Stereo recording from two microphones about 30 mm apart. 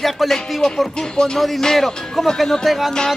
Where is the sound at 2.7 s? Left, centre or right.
Centre.